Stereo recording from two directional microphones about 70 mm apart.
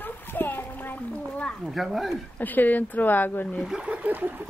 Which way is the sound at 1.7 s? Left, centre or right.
Centre.